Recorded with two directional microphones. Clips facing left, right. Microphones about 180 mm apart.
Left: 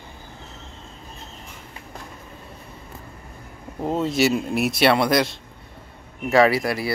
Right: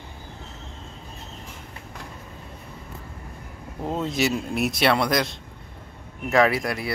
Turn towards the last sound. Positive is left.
turn(degrees=5)  # may be behind; listen again after turning